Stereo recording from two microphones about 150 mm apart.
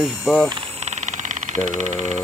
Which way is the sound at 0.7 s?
45° right (ahead or behind).